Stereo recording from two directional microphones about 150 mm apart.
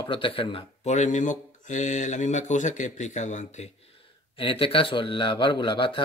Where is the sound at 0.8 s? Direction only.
50° left (ahead or behind).